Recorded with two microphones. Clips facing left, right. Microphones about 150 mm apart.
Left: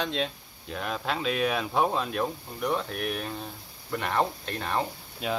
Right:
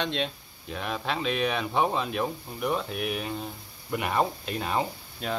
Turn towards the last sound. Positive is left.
turn(degrees=5)  # may be behind; listen again after turning